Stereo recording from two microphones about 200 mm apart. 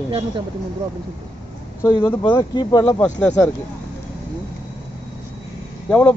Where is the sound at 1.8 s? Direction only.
10° left (ahead or behind).